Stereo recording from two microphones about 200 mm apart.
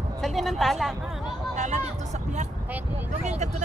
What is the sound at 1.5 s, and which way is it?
Vehicle, 35° right (ahead or behind).